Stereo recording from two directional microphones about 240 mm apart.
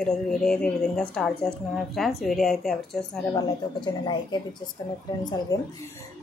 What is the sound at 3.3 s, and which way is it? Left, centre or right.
A woman's voice, centre.